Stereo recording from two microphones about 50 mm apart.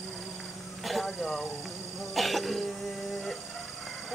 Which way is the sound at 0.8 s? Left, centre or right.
Centre.